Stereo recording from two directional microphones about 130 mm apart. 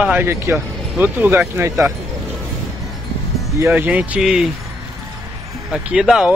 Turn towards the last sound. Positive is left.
turn(degrees=-5)  # may be behind; listen again after turning